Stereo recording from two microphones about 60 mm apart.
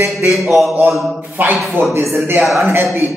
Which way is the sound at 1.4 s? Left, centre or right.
Right.